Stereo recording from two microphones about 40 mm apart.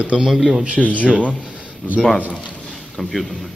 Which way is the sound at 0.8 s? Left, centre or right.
Left.